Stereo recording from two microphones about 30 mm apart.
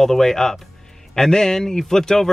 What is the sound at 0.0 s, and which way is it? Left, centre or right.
Speech, centre.